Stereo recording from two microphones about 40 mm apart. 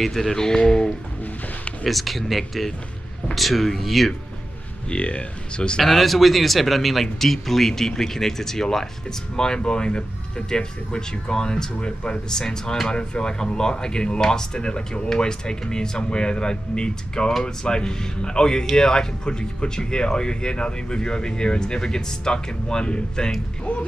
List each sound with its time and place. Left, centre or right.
0.0 s speech: centre
1.2 s music: left
1.9 s speech: centre
4.8 s speech: left
5.8 s speech: centre